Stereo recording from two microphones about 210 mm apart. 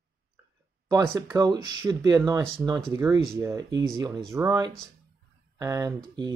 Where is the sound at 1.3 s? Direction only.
20° right (ahead or behind).